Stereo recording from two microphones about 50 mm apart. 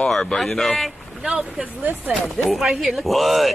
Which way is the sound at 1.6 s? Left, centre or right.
Right.